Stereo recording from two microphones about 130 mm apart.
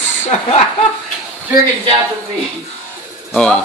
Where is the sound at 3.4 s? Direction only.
10° left (ahead or behind).